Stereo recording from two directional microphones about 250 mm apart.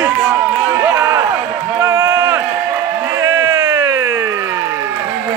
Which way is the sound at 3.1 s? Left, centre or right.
Centre.